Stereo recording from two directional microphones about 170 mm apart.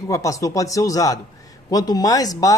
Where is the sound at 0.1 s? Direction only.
20° left (ahead or behind).